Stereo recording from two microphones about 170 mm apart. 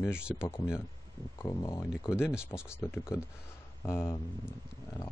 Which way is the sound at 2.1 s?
5° right (ahead or behind).